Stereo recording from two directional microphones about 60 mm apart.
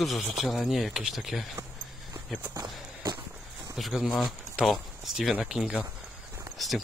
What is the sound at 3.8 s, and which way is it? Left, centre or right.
Speech, centre.